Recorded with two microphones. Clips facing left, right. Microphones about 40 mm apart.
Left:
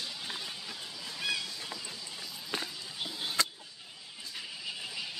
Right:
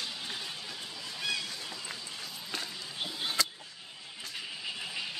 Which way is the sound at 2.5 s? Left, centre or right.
Left.